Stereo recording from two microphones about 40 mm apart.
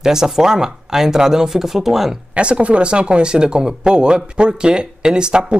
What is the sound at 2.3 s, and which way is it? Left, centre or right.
Speech, right.